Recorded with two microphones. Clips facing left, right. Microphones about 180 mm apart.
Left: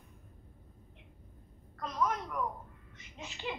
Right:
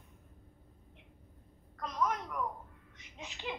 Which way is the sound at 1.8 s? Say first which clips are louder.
Left 1 dB; centre (ahead or behind).